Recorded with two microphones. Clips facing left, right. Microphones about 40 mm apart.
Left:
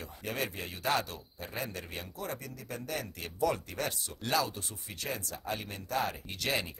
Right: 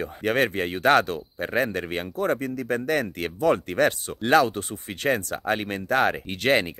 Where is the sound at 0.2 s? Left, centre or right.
Right.